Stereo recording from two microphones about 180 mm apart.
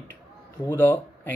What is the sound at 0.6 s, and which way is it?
Speech, 10° left (ahead or behind).